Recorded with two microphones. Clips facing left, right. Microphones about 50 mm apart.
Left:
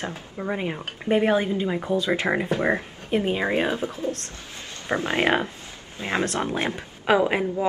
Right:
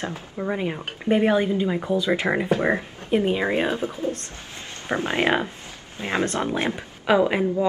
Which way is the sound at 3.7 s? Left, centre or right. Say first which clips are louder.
Right 1 dB; right.